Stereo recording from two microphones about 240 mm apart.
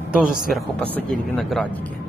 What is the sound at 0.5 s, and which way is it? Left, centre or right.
Speech, centre.